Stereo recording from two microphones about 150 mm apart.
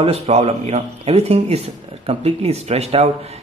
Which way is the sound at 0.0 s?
45° right (ahead or behind).